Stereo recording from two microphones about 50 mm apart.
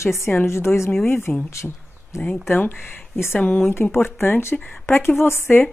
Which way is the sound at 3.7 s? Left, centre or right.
Left.